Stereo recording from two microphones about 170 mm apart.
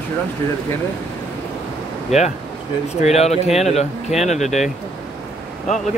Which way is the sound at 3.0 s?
40° left (ahead or behind).